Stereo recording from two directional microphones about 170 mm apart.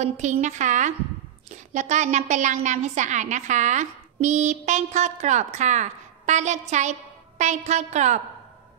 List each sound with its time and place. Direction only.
0.0 s a woman's voice: 45° right (ahead or behind)